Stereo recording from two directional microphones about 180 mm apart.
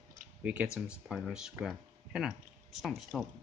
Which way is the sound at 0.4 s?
5° right (ahead or behind).